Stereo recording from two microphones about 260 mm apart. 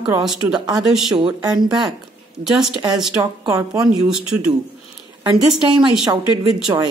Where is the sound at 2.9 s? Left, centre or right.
Centre.